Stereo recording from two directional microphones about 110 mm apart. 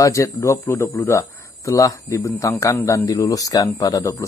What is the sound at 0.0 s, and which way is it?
Speech, 30° left (ahead or behind).